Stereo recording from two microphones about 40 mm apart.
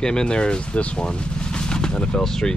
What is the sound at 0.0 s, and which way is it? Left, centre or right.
Speech, centre.